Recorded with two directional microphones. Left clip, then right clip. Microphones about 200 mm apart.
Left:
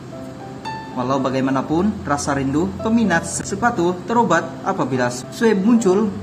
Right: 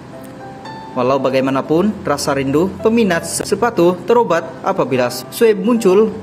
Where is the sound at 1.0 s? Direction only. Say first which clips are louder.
Right 6 dB; 15° right (ahead or behind).